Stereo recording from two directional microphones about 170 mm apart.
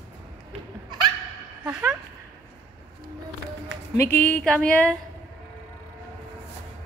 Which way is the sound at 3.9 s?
65° left (ahead or behind).